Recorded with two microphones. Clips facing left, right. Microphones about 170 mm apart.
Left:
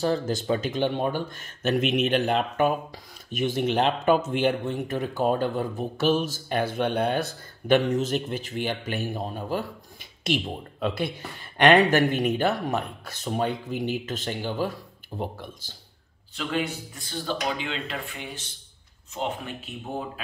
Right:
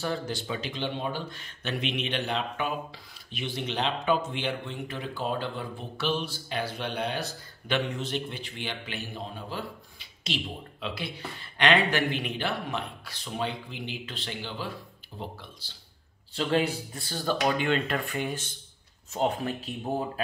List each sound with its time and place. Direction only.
0.0 s a man's voice: 40° left (ahead or behind)
16.3 s speech: 35° right (ahead or behind); by 18.4 s 50° right (ahead or behind)
19.1 s speech: 40° right (ahead or behind)